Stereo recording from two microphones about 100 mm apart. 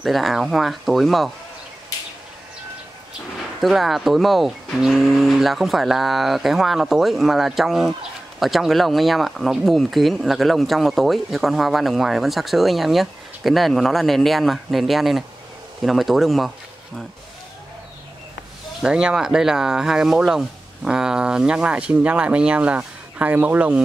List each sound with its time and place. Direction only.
0.0 s speech: centre (ahead or behind)
3.6 s speech: centre (ahead or behind)
18.8 s speech: 10° right (ahead or behind)